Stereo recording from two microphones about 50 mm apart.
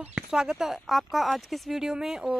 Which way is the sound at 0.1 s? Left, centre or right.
Centre.